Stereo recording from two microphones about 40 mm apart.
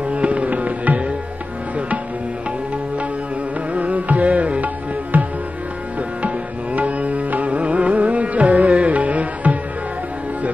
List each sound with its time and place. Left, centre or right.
0.1 s music: right
3.7 s music: right
5.1 s music: right